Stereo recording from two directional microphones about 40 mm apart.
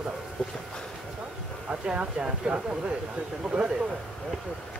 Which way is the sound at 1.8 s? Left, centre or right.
Right.